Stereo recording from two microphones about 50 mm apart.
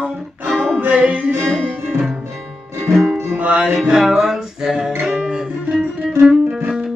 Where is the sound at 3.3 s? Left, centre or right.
Right.